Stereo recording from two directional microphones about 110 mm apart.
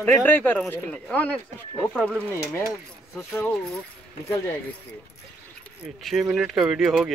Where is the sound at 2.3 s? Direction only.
30° left (ahead or behind).